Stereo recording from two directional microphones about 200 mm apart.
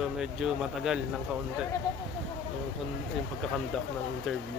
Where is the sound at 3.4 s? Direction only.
Centre (ahead or behind).